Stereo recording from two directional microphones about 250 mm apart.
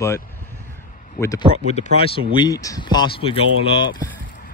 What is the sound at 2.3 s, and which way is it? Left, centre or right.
Speech, centre.